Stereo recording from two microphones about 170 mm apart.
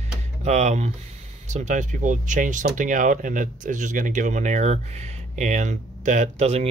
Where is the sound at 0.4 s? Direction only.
40° right (ahead or behind).